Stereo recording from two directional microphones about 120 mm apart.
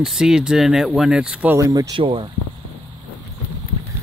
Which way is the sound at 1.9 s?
45° right (ahead or behind).